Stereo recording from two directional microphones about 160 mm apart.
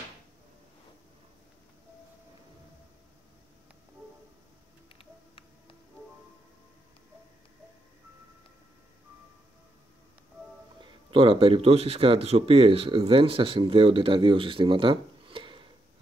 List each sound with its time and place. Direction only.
4.9 s music: 35° left (ahead or behind)
10.8 s speech: 30° right (ahead or behind)